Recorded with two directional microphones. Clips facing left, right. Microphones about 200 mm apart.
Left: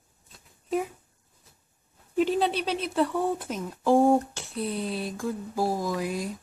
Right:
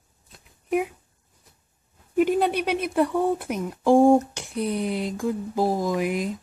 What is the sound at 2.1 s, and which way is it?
Speech, 10° right (ahead or behind).